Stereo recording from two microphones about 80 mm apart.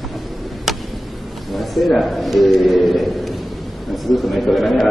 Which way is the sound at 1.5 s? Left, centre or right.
Centre.